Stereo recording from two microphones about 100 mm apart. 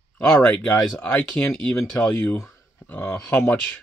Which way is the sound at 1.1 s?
15° left (ahead or behind).